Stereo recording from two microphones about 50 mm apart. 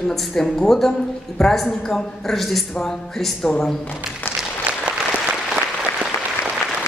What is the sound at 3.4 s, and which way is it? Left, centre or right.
Speech, left.